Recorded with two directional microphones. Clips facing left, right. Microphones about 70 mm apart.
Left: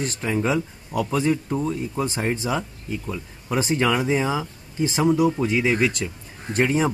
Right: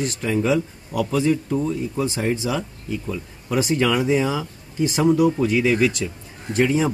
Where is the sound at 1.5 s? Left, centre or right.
Centre.